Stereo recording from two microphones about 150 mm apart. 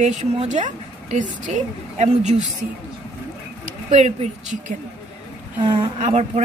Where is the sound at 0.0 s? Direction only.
55° right (ahead or behind).